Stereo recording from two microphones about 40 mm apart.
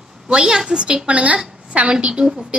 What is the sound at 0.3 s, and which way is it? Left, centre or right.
A woman's voice, centre.